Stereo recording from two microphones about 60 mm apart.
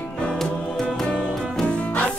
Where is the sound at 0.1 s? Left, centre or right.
Centre.